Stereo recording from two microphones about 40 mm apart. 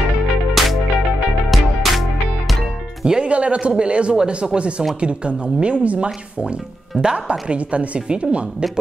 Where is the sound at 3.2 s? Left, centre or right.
Right.